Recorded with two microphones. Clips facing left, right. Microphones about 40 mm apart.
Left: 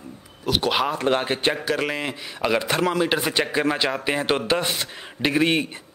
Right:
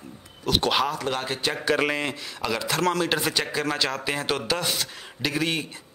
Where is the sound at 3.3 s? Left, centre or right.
Left.